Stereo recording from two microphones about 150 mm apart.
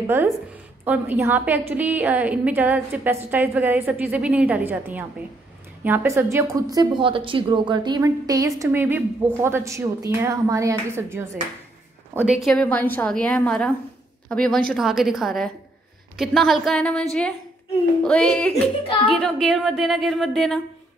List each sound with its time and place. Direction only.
0.0 s a woman's voice: 15° right (ahead or behind)
8.6 s a woman's voice: 15° right (ahead or behind)
12.4 s a woman's voice: 5° left (ahead or behind)